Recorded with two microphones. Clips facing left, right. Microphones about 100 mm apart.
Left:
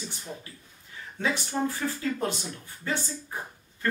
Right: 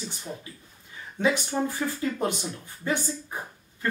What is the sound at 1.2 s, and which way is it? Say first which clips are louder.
Speech: right 5 dB; 15° right (ahead or behind).